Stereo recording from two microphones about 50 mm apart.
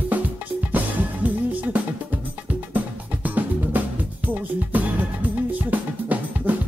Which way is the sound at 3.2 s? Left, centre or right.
Right.